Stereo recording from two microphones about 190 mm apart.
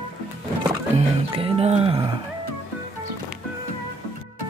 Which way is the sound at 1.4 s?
35° right (ahead or behind).